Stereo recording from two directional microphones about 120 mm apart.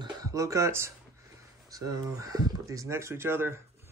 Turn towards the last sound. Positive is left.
turn(degrees=-20)  # may be behind; listen again after turning